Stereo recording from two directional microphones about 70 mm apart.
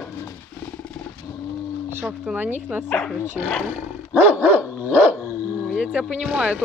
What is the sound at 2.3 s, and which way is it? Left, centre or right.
Speech, right.